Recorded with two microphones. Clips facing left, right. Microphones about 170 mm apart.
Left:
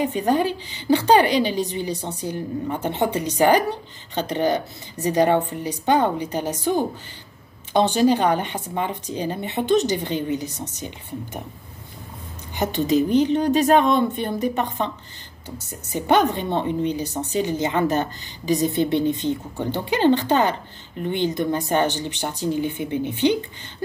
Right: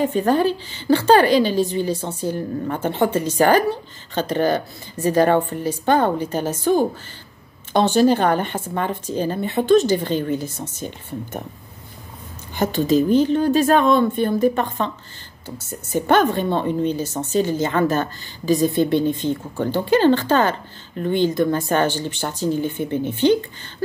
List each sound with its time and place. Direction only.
0.0 s speech: 15° left (ahead or behind)
12.5 s speech: 20° left (ahead or behind)
16.1 s speech: 15° left (ahead or behind)